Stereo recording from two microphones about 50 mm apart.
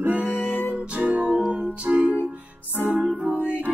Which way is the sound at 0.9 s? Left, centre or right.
Right.